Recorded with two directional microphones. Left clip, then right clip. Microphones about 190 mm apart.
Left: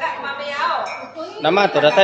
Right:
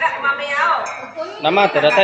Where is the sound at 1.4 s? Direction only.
15° left (ahead or behind).